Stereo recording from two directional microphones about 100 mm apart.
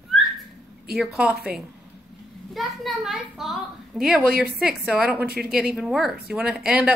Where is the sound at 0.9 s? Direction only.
5° right (ahead or behind).